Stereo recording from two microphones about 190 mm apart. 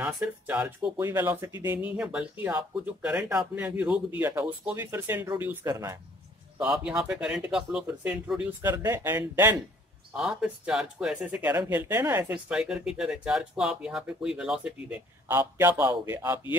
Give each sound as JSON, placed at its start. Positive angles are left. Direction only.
{"t": 0.0, "sound": "speech", "side_deg": -5}
{"t": 6.6, "sound": "speech", "side_deg": -5}